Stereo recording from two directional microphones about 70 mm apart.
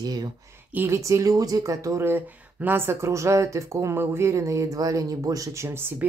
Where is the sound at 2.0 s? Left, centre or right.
Right.